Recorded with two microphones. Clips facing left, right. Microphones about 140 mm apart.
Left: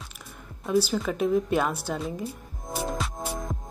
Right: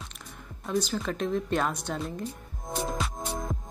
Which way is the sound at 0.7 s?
5° left (ahead or behind).